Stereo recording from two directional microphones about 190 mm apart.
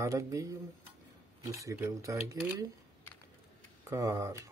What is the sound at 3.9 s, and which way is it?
Speech, 15° right (ahead or behind).